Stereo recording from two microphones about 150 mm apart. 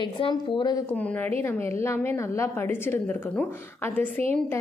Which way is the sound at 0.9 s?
10° left (ahead or behind).